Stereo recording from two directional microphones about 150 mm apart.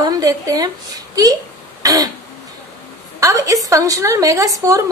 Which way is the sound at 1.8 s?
25° right (ahead or behind).